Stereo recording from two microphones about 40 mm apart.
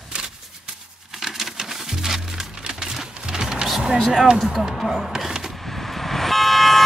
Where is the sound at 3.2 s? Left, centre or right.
Centre.